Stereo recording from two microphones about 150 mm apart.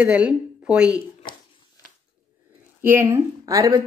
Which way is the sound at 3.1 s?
20° right (ahead or behind).